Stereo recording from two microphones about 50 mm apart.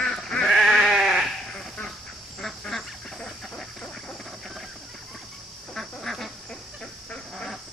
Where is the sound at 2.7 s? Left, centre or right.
Centre.